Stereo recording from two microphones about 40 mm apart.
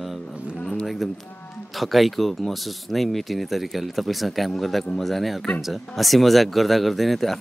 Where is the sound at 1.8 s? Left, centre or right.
Centre.